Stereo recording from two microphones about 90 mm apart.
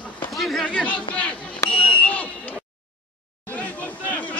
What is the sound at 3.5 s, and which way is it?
Hubbub, 15° left (ahead or behind).